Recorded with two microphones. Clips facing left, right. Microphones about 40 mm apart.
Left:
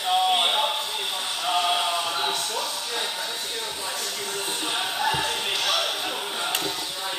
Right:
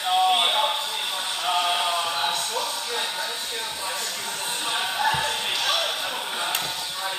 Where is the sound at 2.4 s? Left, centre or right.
Right.